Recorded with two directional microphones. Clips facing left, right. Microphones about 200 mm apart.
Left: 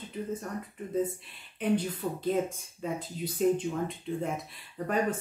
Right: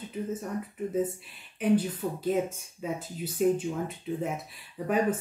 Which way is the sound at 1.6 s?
5° right (ahead or behind).